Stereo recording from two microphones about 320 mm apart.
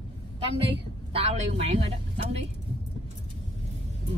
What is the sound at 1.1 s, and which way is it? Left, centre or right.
A man's voice, centre.